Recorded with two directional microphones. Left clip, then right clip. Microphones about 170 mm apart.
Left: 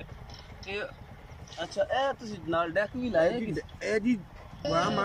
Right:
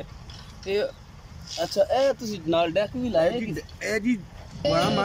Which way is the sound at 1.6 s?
25° right (ahead or behind).